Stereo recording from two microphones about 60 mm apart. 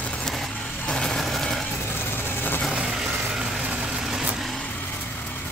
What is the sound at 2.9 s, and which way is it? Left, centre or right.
Vehicle, centre.